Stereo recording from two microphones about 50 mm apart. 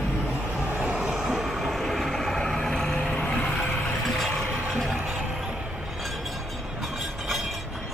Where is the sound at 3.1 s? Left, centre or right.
Left.